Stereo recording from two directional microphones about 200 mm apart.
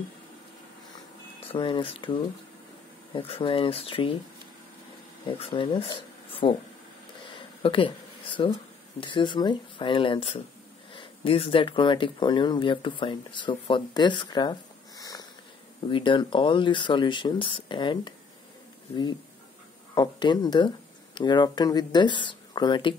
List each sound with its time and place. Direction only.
1.5 s speech: 25° left (ahead or behind)
5.2 s speech: 25° left (ahead or behind)
7.2 s a sound: 25° left (ahead or behind)
9.0 s speech: 25° left (ahead or behind)
19.9 s speech: 20° left (ahead or behind)